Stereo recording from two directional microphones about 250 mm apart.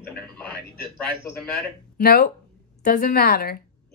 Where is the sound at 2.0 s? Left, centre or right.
Left.